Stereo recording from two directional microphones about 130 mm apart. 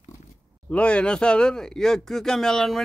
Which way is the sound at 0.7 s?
10° left (ahead or behind).